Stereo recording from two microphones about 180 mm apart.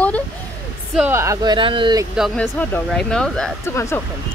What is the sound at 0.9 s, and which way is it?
Speech, 10° right (ahead or behind).